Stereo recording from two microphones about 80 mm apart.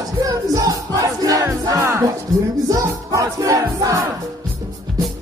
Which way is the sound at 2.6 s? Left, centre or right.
Right.